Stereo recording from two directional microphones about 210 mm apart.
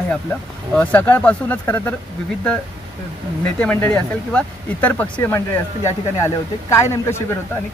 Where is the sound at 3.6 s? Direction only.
10° left (ahead or behind).